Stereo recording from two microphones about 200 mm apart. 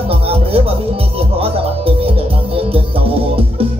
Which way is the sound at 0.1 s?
30° right (ahead or behind).